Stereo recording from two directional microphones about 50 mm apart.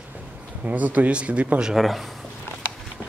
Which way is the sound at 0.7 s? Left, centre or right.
Right.